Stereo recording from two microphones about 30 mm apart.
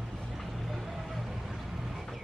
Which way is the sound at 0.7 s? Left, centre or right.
Centre.